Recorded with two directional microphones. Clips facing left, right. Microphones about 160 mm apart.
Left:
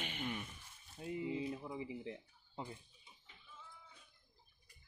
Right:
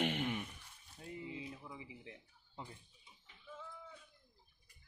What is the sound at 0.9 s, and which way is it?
Speech, 20° left (ahead or behind).